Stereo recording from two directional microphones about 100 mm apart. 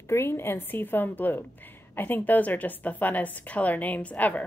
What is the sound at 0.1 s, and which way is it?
A woman's voice, 25° left (ahead or behind).